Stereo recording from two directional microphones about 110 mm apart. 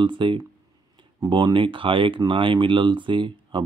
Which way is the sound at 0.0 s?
50° right (ahead or behind).